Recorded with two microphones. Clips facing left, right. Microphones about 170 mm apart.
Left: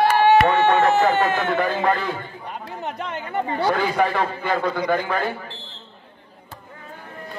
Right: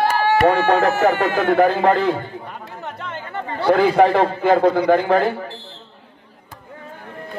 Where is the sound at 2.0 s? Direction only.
35° right (ahead or behind).